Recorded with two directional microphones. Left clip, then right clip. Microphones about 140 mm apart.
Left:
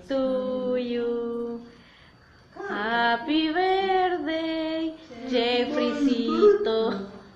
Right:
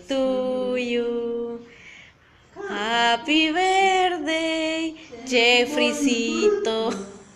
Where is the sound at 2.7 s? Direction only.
15° right (ahead or behind).